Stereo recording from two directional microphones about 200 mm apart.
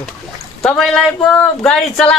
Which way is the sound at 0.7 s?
5° left (ahead or behind).